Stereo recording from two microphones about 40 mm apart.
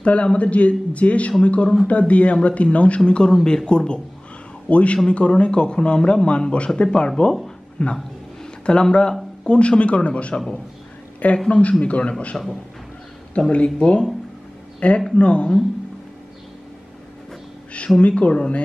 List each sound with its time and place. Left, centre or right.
0.0 s a man's voice: left
4.6 s a man's voice: left
11.3 s a man's voice: left
17.9 s speech: centre
18.2 s speech: left